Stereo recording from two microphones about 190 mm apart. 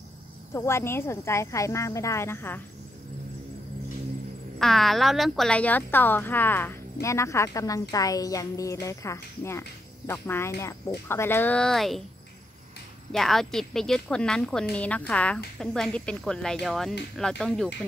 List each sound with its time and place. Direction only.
0.5 s a woman's voice: 15° left (ahead or behind)
4.6 s a woman's voice: centre (ahead or behind)
13.1 s speech: centre (ahead or behind)